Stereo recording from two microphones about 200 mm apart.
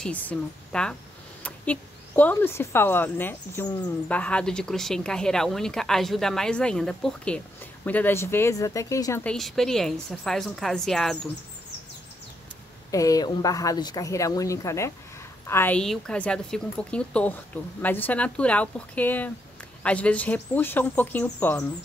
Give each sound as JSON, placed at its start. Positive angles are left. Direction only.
{"t": 0.0, "sound": "a woman's voice", "side_deg": 5}
{"t": 12.9, "sound": "a woman's voice", "side_deg": 15}